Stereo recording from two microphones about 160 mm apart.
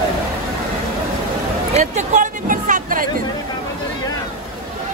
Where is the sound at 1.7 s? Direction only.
45° right (ahead or behind).